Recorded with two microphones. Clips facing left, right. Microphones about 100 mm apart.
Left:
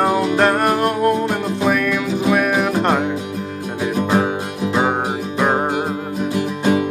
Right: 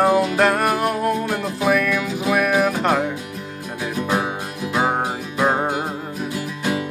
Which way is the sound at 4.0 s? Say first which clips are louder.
Left 4 dB; 20° left (ahead or behind).